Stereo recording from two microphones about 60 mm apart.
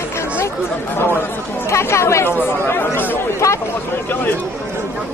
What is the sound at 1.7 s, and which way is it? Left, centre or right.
Speech, left.